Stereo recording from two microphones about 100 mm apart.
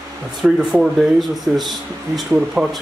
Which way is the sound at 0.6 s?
5° right (ahead or behind).